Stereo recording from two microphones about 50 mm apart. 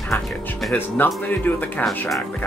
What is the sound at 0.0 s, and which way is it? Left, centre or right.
Music, centre.